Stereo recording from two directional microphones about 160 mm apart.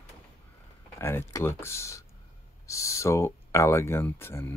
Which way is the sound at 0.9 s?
15° left (ahead or behind).